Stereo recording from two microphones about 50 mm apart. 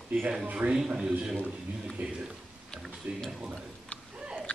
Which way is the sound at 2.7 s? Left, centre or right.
Centre.